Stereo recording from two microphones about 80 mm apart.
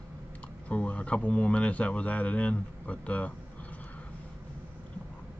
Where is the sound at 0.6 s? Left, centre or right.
Centre.